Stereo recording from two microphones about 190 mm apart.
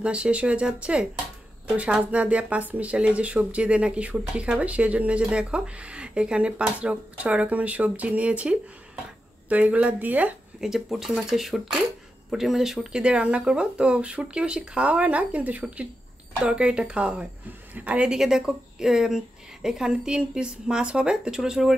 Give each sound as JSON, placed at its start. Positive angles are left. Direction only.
{"t": 0.0, "sound": "speech", "side_deg": -5}